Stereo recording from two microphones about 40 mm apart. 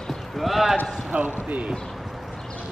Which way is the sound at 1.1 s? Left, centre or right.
Right.